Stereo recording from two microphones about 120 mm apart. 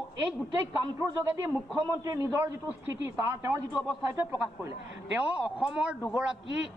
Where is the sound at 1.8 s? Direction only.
30° right (ahead or behind).